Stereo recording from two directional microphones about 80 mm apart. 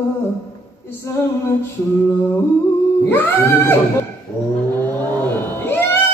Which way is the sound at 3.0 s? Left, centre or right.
Left.